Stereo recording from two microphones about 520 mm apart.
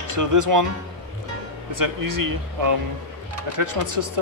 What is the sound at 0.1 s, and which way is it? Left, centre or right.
Speech, right.